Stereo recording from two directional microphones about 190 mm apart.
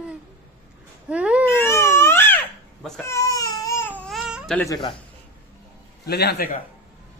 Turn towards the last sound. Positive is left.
turn(degrees=55)  # may be behind; listen again after turning